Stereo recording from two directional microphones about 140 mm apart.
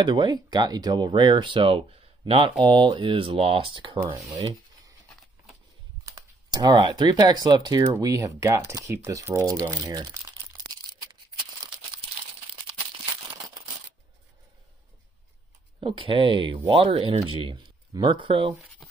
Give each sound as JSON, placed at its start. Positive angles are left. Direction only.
{"t": 0.0, "sound": "speech", "side_deg": -35}
{"t": 4.3, "sound": "rub", "side_deg": -25}
{"t": 6.0, "sound": "speech", "side_deg": -25}
{"t": 15.8, "sound": "speech", "side_deg": -40}